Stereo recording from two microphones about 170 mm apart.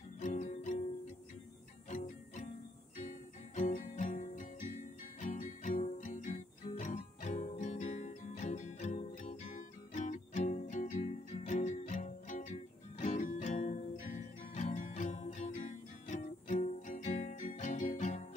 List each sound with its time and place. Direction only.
0.2 s music: 45° left (ahead or behind)
3.0 s music: 45° left (ahead or behind)